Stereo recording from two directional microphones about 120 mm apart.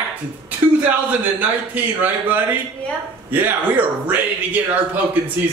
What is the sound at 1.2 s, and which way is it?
Speech, 15° right (ahead or behind).